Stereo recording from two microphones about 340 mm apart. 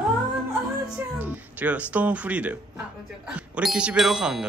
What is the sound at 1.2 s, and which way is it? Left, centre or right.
Music, centre.